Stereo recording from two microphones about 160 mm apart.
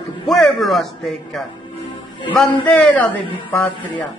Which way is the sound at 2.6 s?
10° left (ahead or behind).